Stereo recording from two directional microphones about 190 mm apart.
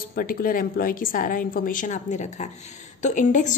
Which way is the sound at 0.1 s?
45° left (ahead or behind).